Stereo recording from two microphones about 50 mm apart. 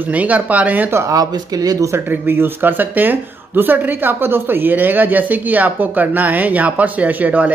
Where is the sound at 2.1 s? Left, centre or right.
Right.